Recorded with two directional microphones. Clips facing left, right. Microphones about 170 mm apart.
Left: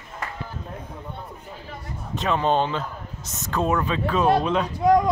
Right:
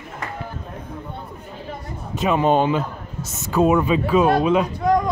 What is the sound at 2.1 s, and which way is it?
A man's voice, 10° right (ahead or behind).